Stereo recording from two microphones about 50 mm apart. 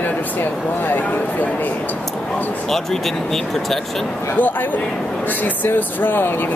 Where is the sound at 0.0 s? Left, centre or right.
Left.